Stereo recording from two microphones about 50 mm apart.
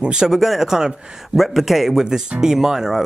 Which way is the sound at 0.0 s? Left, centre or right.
Centre.